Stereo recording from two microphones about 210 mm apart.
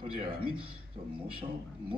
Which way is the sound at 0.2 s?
25° right (ahead or behind).